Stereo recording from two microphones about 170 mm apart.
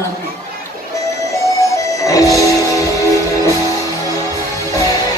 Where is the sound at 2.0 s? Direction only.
20° left (ahead or behind).